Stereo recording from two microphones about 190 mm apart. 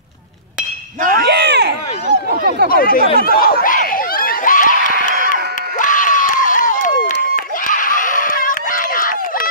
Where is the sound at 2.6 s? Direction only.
50° left (ahead or behind).